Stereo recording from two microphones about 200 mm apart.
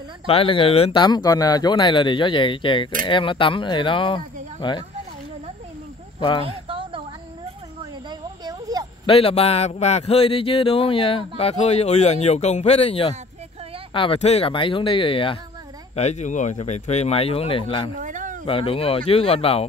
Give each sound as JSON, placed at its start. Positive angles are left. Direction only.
{"t": 0.3, "sound": "speech", "side_deg": 25}
{"t": 6.1, "sound": "speech", "side_deg": 25}
{"t": 6.4, "sound": "a sound", "side_deg": -25}
{"t": 9.0, "sound": "speech", "side_deg": 30}
{"t": 18.0, "sound": "a sound", "side_deg": -40}
{"t": 18.4, "sound": "speech", "side_deg": 25}